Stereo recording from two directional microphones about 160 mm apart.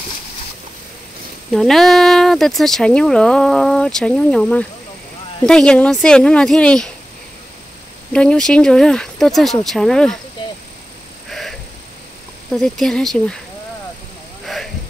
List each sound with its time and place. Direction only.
1.5 s speech: centre (ahead or behind)
8.1 s speech: 5° left (ahead or behind)
11.2 s frog: centre (ahead or behind)
12.5 s speech: centre (ahead or behind)
14.4 s a sound: centre (ahead or behind)